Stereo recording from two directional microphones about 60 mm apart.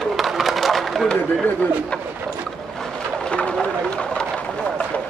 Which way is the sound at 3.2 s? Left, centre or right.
Centre.